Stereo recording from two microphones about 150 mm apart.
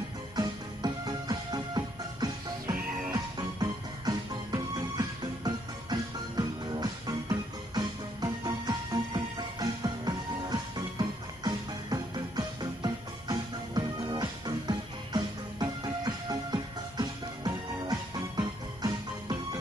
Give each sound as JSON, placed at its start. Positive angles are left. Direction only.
{"t": 0.4, "sound": "music", "side_deg": -25}